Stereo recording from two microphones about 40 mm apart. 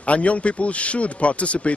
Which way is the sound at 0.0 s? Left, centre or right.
Left.